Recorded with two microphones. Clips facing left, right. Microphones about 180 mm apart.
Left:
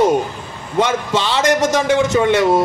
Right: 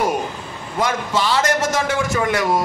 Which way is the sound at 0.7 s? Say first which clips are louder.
Left 4 dB; 20° left (ahead or behind).